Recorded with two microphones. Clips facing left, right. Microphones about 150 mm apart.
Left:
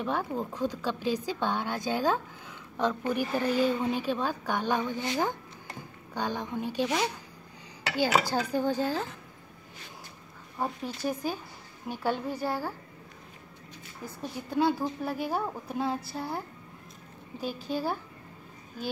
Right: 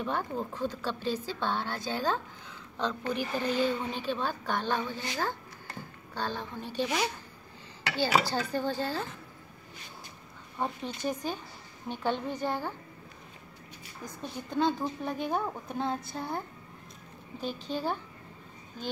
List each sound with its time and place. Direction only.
0.0 s a woman's voice: 5° left (ahead or behind)
7.9 s a woman's voice: 15° left (ahead or behind)
10.6 s a woman's voice: 5° left (ahead or behind)
14.0 s a woman's voice: 10° left (ahead or behind)